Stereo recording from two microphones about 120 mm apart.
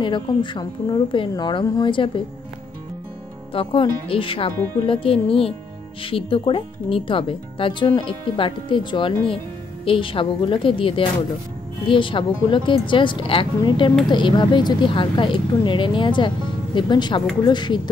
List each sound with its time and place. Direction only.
0.0 s speech: 40° left (ahead or behind)
3.5 s speech: 45° left (ahead or behind)